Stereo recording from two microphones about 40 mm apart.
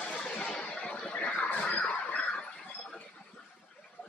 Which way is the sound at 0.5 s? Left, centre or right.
Left.